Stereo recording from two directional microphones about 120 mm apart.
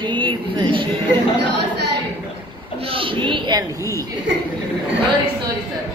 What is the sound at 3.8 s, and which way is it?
Speech, 25° left (ahead or behind).